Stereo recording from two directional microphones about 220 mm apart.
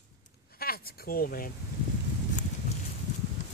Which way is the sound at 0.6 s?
40° left (ahead or behind).